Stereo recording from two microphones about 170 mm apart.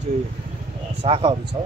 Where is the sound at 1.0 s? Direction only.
30° right (ahead or behind).